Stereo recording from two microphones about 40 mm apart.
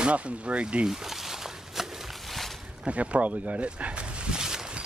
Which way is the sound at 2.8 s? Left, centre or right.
Right.